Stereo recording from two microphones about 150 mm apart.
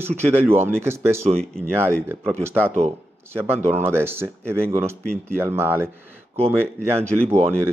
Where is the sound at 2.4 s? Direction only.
15° right (ahead or behind).